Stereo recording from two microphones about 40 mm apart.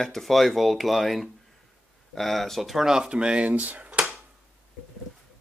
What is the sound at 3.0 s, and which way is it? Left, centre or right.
Speech, right.